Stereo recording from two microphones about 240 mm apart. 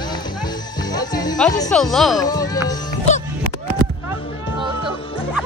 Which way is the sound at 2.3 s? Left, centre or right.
Centre.